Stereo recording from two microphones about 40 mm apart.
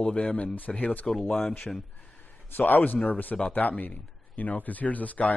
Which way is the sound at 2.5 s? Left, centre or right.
Left.